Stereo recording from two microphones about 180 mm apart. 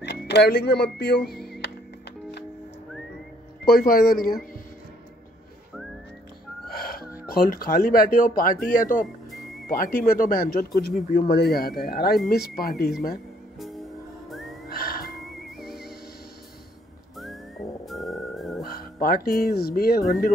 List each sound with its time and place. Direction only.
0.0 s speech: 70° left (ahead or behind)
3.6 s speech: 55° left (ahead or behind)
6.7 s music: 60° left (ahead or behind)
7.2 s speech: 55° left (ahead or behind)
14.7 s music: 60° left (ahead or behind)
15.6 s music: centre (ahead or behind)
17.8 s whistling: centre (ahead or behind)
18.6 s music: 55° left (ahead or behind)
19.4 s speech: 55° left (ahead or behind)